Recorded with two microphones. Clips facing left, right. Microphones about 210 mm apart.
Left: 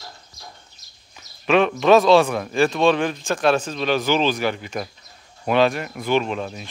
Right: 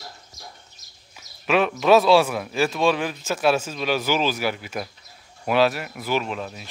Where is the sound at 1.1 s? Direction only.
5° right (ahead or behind).